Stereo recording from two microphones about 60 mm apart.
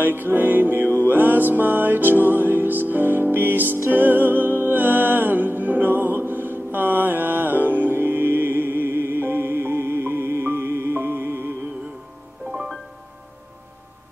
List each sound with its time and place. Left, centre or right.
0.0 s music: right